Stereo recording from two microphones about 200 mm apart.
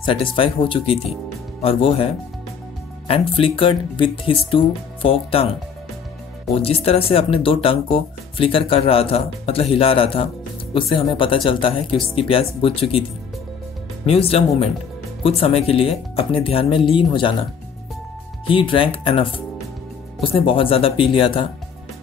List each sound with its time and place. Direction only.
0.0 s speech: 25° left (ahead or behind)
3.1 s speech: 25° left (ahead or behind)
6.5 s speech: 30° left (ahead or behind)
14.0 s speech: 30° left (ahead or behind)
18.5 s speech: 25° left (ahead or behind)